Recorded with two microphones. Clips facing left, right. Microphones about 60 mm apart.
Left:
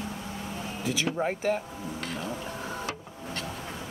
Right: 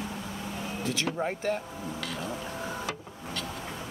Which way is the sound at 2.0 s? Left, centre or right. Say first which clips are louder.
Left 1 dB; left.